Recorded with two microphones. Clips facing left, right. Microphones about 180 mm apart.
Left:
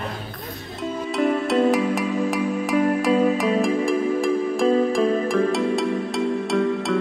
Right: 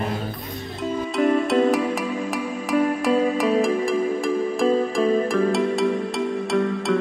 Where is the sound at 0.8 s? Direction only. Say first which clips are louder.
Right 1 dB; centre (ahead or behind).